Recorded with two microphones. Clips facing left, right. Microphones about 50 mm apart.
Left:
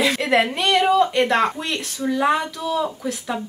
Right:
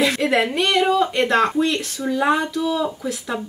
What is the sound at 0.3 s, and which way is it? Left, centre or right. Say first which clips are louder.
Speech: left 1 dB; centre.